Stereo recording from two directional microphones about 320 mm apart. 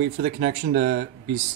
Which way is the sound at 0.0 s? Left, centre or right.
Right.